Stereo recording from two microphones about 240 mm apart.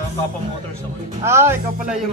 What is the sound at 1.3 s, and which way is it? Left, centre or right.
Speech, centre.